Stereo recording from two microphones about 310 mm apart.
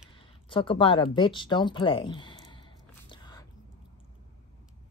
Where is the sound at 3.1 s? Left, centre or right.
Centre.